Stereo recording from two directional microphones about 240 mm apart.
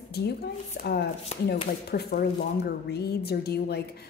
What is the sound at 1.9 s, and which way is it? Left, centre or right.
A woman's voice, left.